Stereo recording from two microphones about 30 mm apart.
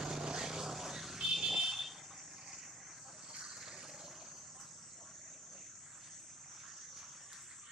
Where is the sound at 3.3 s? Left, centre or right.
Centre.